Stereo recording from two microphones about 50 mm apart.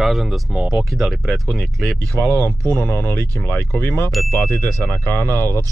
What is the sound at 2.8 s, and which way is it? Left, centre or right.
Speech, left.